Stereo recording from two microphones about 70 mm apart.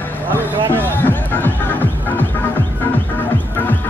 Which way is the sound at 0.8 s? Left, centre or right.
Left.